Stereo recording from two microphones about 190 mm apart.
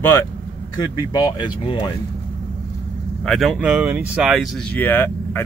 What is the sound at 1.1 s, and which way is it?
Speech, 20° left (ahead or behind).